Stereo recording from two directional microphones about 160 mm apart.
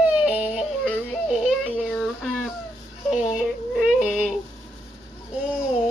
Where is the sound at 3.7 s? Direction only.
Centre (ahead or behind).